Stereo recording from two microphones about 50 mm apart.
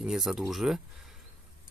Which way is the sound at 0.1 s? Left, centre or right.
Centre.